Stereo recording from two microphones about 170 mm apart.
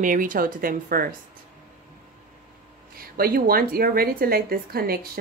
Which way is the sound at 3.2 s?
60° right (ahead or behind).